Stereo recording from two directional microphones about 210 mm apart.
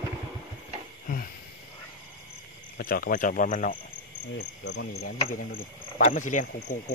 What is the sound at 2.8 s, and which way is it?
Speech, 45° left (ahead or behind).